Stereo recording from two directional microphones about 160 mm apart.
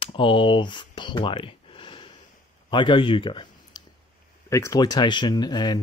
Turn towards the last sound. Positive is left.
turn(degrees=25)  # may be behind; listen again after turning